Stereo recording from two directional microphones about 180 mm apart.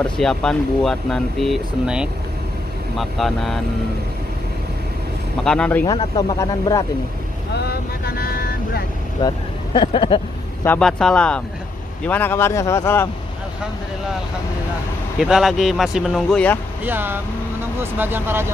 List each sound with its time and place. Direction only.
0.2 s speech: 5° left (ahead or behind)
5.4 s speech: 5° left (ahead or behind)
5.9 s speech: 25° left (ahead or behind)
7.5 s speech: 60° left (ahead or behind)
9.2 s speech: 20° left (ahead or behind)
10.6 s a man's voice: 5° left (ahead or behind)
15.1 s speech: 5° right (ahead or behind)
16.8 s speech: 10° right (ahead or behind)